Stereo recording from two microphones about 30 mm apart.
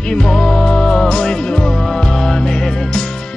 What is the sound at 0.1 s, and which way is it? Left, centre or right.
Music, left.